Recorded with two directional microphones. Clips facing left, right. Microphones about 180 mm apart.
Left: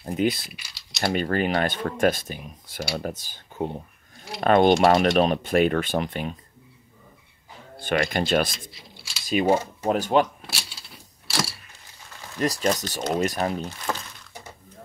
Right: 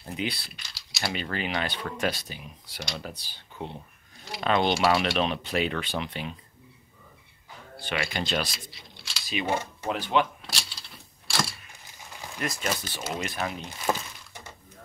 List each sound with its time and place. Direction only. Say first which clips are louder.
0.0 s speech: left 9 dB; 45° left (ahead or behind)
0.5 s speech: left 3 dB; 10° left (ahead or behind)
1.0 s speech: left 8 dB; 50° left (ahead or behind)
7.8 s speech: left 7 dB; 45° left (ahead or behind)
8.9 s a sound: even; 5° left (ahead or behind)
9.3 s speech: left 8 dB; 45° left (ahead or behind)
10.4 s a sound: left 1 dB; 5° left (ahead or behind)
12.4 s speech: left 8 dB; 35° left (ahead or behind)
13.9 s a sound: right 3 dB; 15° right (ahead or behind)